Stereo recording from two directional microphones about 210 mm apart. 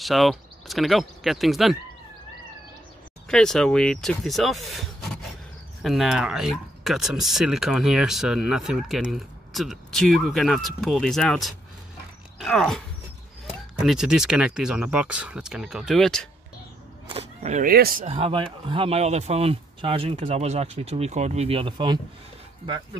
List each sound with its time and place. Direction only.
0.0 s speech: centre (ahead or behind)
3.3 s speech: 5° left (ahead or behind)
17.1 s speech: 30° right (ahead or behind); by 18.0 s 45° right (ahead or behind)
18.0 s speech: 25° right (ahead or behind)